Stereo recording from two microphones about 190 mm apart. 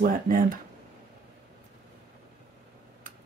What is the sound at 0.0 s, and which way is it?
Speech, 45° right (ahead or behind).